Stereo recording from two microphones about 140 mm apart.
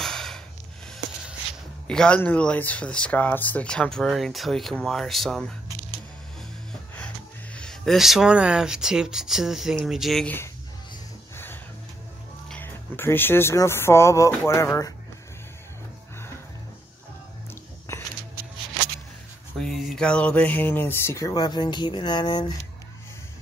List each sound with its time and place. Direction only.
0.0 s snort: 5° left (ahead or behind)
1.9 s speech: 5° left (ahead or behind)
7.5 s speech: 5° left (ahead or behind)
10.2 s speech: 15° left (ahead or behind)
12.4 s speech: 15° left (ahead or behind)
19.6 s speech: centre (ahead or behind); by 22.6 s 30° left (ahead or behind)